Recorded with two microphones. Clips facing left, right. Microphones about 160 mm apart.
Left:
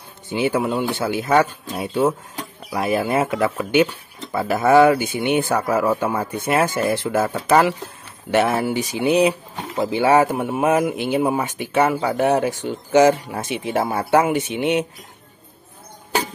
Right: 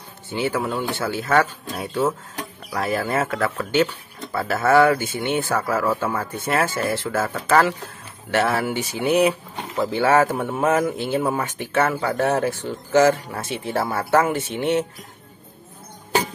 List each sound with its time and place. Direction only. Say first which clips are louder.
0.3 s a man's voice: left 3 dB; 20° left (ahead or behind)